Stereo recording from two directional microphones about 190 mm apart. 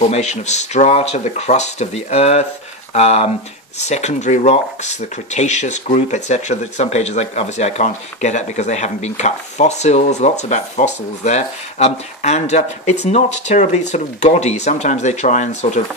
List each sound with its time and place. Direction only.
0.1 s speech: 35° left (ahead or behind)